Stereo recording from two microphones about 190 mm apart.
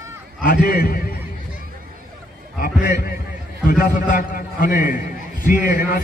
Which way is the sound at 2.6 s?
50° left (ahead or behind).